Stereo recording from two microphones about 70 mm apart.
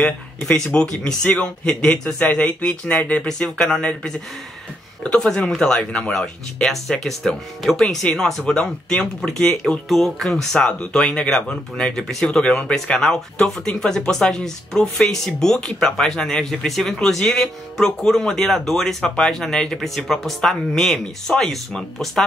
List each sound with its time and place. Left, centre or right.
0.0 s speech: centre